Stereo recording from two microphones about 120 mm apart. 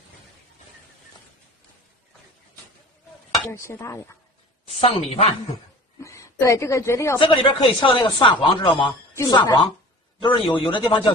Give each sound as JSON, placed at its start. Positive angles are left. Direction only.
{"t": 3.5, "sound": "speech", "side_deg": 20}
{"t": 4.6, "sound": "a woman's voice", "side_deg": 60}
{"t": 5.9, "sound": "a woman's voice", "side_deg": 25}
{"t": 7.2, "sound": "a woman's voice", "side_deg": 45}